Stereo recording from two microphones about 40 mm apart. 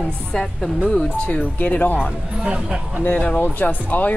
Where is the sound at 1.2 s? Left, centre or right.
Left.